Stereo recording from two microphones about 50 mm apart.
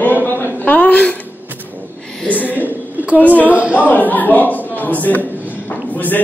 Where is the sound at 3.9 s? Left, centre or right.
Left.